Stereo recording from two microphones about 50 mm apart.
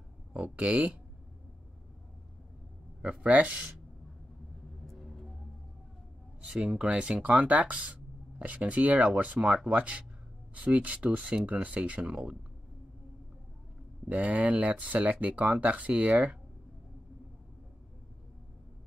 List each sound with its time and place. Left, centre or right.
0.3 s speech: right
3.0 s speech: right
4.8 s music: centre
6.4 s speech: right
14.0 s speech: right